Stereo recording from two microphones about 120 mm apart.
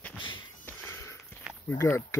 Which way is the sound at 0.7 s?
20° left (ahead or behind).